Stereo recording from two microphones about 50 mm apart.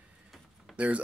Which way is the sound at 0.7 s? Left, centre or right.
Right.